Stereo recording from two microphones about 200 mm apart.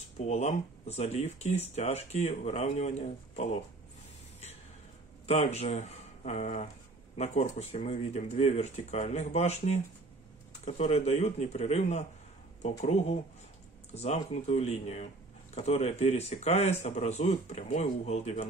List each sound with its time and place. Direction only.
0.2 s speech: 35° left (ahead or behind)
5.2 s speech: 30° left (ahead or behind)